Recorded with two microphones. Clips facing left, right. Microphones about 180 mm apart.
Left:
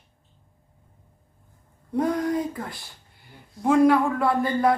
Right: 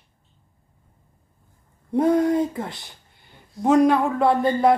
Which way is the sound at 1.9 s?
25° right (ahead or behind).